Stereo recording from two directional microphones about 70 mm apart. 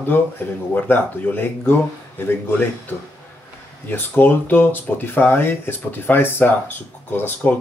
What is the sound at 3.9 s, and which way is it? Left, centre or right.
Speech, left.